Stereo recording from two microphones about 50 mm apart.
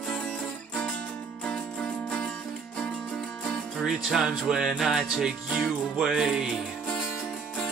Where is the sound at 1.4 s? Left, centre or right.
Centre.